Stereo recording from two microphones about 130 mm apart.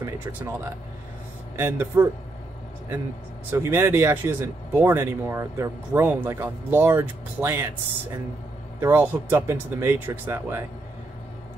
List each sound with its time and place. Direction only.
0.0 s speech: 15° right (ahead or behind)
1.6 s speech: 15° right (ahead or behind)
3.5 s speech: 20° right (ahead or behind)
8.8 s speech: 15° right (ahead or behind)